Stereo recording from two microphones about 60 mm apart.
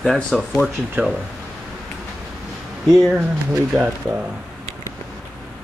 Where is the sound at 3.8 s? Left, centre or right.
Right.